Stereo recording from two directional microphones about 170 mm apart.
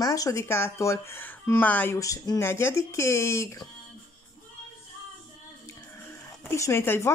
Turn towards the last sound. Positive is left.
turn(degrees=15)  # may be behind; listen again after turning